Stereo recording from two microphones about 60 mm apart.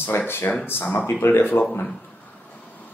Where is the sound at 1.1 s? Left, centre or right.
Left.